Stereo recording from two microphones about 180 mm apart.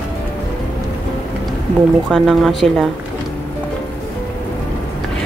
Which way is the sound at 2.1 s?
Centre (ahead or behind).